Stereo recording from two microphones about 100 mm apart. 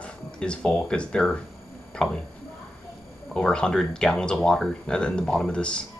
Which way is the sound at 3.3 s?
10° left (ahead or behind).